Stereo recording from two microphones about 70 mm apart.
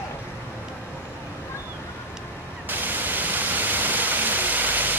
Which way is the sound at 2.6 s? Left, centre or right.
Right.